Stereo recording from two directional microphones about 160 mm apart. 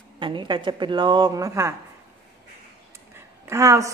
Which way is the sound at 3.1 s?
15° right (ahead or behind).